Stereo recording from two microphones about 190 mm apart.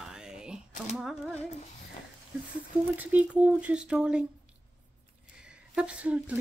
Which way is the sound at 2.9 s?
10° right (ahead or behind).